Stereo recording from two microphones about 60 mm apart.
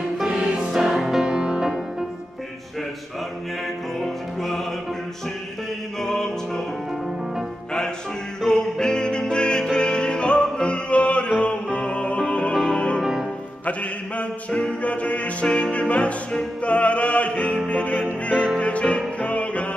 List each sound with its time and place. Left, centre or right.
0.2 s music: centre
4.0 s music: centre
5.9 s music: centre
8.4 s music: centre
13.0 s music: centre
13.7 s music: left